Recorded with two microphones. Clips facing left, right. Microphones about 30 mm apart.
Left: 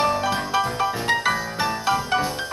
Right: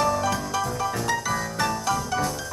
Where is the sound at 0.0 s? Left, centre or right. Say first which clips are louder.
Left 2 dB; left.